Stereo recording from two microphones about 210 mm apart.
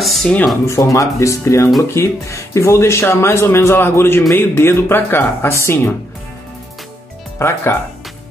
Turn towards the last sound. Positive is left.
turn(degrees=10)  # may be behind; listen again after turning